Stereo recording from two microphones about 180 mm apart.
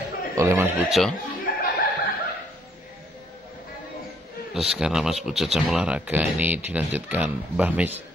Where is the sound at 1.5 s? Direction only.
50° left (ahead or behind).